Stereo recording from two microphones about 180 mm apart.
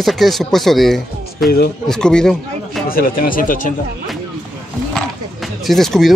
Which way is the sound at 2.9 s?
55° left (ahead or behind).